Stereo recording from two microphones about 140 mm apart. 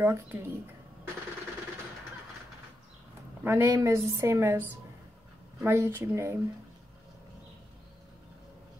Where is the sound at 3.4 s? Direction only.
20° right (ahead or behind).